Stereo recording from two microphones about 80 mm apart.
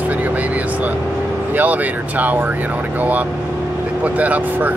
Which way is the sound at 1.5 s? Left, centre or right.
Right.